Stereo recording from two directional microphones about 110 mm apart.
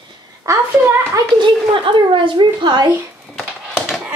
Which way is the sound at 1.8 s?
50° right (ahead or behind).